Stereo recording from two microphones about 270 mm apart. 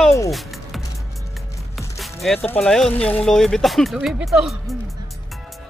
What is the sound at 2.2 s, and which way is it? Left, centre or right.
Speech, centre.